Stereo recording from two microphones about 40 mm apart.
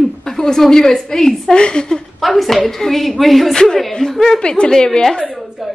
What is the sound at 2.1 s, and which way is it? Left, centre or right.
A woman's voice, centre.